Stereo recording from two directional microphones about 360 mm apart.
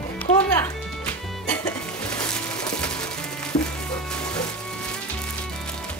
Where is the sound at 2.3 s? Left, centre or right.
Centre.